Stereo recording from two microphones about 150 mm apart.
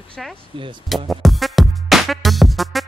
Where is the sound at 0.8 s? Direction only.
Centre (ahead or behind).